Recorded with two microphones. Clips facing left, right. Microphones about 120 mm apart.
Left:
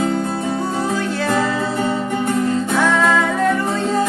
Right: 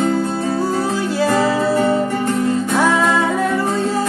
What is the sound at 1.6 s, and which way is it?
Music, 20° left (ahead or behind).